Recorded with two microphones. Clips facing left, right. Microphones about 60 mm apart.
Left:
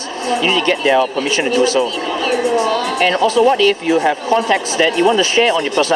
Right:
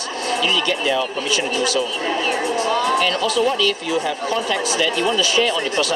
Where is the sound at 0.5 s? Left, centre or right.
Left.